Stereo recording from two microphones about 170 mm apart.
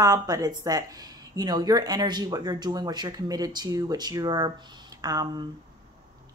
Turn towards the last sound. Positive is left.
turn(degrees=-20)  # may be behind; listen again after turning